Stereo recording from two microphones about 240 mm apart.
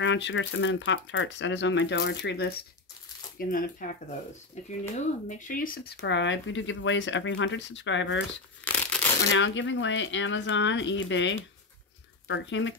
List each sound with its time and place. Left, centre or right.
0.0 s speech: left
8.6 s a sound: centre
9.3 s speech: left